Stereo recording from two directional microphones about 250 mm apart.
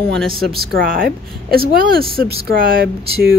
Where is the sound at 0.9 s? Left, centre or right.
Right.